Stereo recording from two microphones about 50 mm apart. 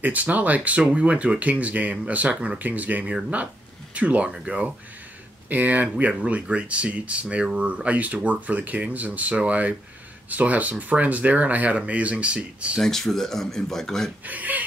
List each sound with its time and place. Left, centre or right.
0.0 s speech: right
12.8 s speech: centre
14.2 s speech: right